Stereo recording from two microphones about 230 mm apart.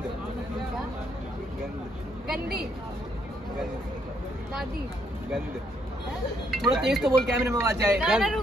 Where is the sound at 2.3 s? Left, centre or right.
Right.